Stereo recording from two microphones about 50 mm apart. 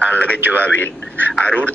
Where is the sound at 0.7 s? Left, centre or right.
Left.